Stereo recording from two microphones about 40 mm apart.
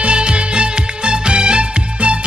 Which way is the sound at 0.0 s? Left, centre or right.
Right.